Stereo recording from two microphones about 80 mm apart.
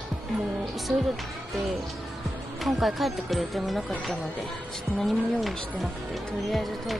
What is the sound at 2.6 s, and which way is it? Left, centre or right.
Speech, centre.